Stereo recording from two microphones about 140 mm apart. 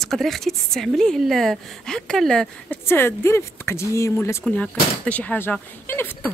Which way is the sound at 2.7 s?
15° left (ahead or behind).